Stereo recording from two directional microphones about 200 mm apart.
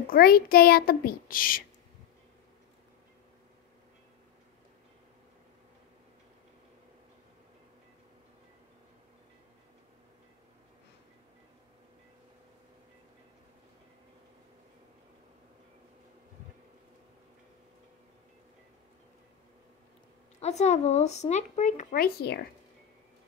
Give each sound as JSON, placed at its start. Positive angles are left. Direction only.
{"t": 0.1, "sound": "a child's voice", "side_deg": 45}
{"t": 20.3, "sound": "speech", "side_deg": 35}